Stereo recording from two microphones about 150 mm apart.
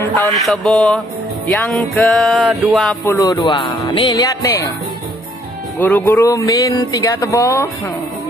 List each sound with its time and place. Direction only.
0.3 s music: 5° left (ahead or behind)
3.1 s speech: 25° left (ahead or behind)
5.8 s speech: 10° left (ahead or behind)